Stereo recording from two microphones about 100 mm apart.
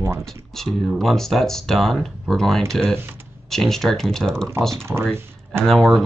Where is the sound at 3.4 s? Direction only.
5° left (ahead or behind).